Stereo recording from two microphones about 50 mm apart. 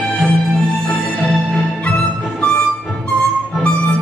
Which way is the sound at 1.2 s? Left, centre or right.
Centre.